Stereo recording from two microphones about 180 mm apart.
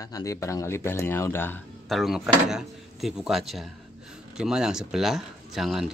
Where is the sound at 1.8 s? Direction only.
Centre (ahead or behind).